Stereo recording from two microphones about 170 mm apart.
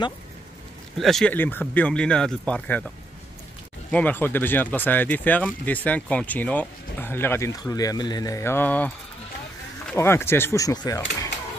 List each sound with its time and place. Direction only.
0.9 s speech: centre (ahead or behind)
3.9 s speech: 10° left (ahead or behind)
9.9 s speech: 15° left (ahead or behind)